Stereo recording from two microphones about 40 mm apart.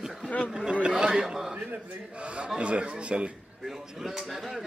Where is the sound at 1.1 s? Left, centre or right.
Centre.